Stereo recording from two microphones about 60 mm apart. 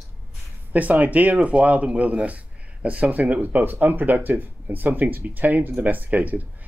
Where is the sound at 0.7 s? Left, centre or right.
Right.